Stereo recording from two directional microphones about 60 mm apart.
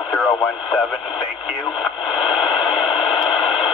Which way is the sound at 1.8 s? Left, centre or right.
Centre.